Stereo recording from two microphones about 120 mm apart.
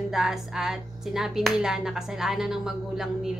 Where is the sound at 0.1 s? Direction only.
5° right (ahead or behind).